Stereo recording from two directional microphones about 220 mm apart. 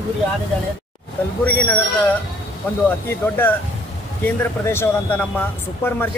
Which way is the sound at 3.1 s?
10° left (ahead or behind).